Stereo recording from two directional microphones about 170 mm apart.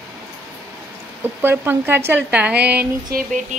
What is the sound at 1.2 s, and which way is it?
A woman's voice, 10° right (ahead or behind).